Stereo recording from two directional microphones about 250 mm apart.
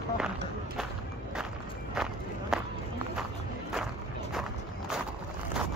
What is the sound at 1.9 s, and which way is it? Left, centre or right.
Walk, centre.